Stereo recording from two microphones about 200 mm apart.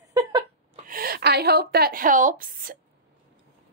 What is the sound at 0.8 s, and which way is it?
A woman's voice, 45° right (ahead or behind).